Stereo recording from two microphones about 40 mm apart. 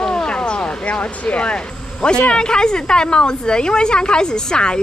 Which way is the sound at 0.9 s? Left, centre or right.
Left.